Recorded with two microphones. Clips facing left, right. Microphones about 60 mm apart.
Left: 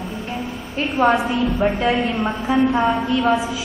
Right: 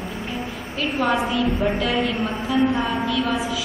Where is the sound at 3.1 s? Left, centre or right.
Left.